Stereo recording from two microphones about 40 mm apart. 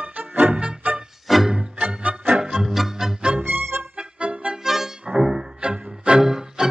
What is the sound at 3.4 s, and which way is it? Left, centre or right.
Music, right.